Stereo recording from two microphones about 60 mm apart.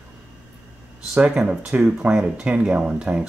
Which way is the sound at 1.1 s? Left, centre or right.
Centre.